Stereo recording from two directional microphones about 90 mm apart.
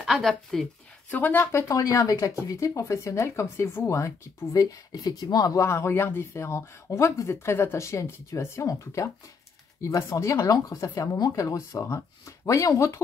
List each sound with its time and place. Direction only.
0.0 s a woman's voice: centre (ahead or behind)
1.1 s speech: 20° left (ahead or behind); by 5.6 s 45° left (ahead or behind)
5.6 s speech: 30° left (ahead or behind)